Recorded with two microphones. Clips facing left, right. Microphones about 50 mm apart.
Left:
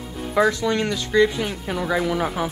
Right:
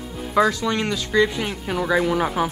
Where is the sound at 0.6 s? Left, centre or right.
Right.